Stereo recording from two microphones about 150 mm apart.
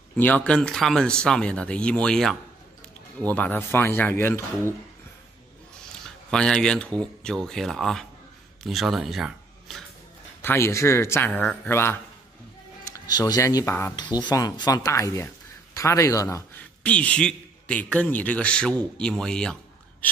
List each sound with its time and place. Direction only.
0.2 s a man's voice: 10° left (ahead or behind)
6.3 s speech: 5° left (ahead or behind)
10.4 s a man's voice: 15° left (ahead or behind)